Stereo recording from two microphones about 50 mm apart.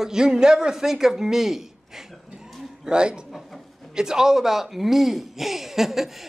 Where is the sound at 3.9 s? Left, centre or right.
Centre.